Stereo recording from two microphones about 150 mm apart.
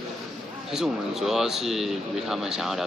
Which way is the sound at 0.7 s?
Centre (ahead or behind).